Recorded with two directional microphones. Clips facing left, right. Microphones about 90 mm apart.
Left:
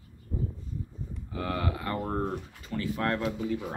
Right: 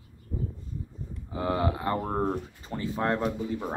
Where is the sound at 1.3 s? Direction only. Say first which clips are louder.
Right 4 dB; 25° right (ahead or behind).